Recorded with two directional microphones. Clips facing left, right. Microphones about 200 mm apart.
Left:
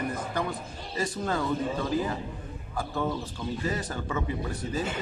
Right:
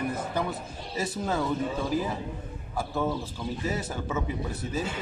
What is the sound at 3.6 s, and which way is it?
Speech, 5° right (ahead or behind).